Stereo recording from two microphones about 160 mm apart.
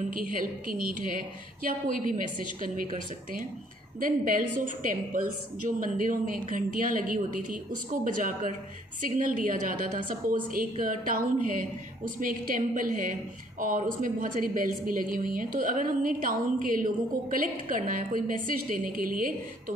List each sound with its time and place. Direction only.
0.1 s a woman's voice: 60° right (ahead or behind)
5.8 s a woman's voice: 55° right (ahead or behind)